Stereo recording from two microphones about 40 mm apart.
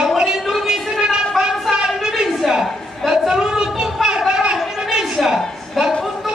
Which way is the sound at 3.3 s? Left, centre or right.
Centre.